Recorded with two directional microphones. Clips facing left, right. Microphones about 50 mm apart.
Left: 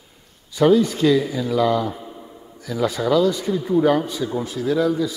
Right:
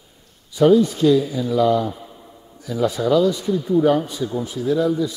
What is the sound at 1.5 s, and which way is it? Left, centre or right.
Speech, left.